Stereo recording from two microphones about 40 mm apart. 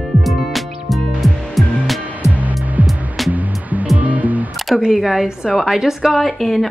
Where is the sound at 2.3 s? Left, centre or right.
Right.